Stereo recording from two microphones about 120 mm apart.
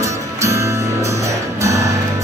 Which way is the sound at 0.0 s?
25° right (ahead or behind).